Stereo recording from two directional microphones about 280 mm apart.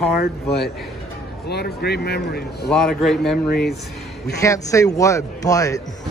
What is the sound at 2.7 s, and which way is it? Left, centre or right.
Speech, centre.